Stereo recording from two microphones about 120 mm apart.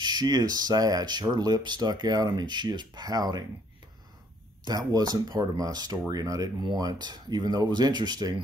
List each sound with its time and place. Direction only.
0.0 s speech: 35° right (ahead or behind)
4.6 s speech: 35° right (ahead or behind)